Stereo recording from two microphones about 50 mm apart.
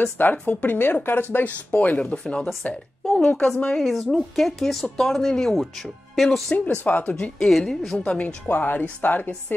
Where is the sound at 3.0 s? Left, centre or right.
Centre.